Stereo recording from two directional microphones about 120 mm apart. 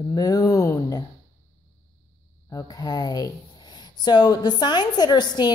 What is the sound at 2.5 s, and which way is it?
Speech, 35° left (ahead or behind).